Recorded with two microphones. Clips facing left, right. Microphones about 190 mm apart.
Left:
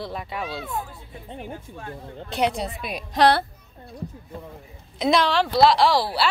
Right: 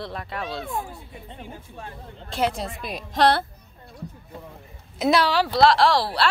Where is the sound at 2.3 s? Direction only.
Centre (ahead or behind).